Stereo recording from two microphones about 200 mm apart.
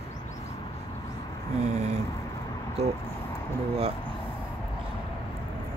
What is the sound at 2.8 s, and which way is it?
Speech, 30° right (ahead or behind).